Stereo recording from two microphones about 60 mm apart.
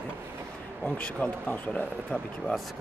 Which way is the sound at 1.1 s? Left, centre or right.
Left.